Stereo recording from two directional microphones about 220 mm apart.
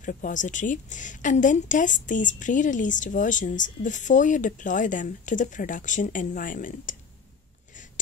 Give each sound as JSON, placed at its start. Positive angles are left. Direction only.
{"t": 0.0, "sound": "a woman's voice", "side_deg": 35}